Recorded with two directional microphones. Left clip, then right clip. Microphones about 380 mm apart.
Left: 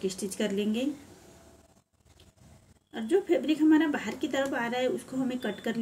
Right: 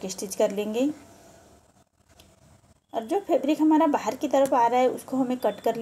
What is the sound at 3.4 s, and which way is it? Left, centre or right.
A woman's voice, centre.